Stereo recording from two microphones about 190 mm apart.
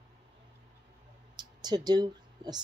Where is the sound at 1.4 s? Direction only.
20° right (ahead or behind).